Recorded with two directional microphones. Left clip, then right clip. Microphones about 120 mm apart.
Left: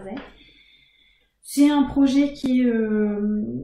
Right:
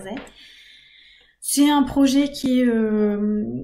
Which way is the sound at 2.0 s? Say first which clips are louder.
Right 1 dB; 10° right (ahead or behind).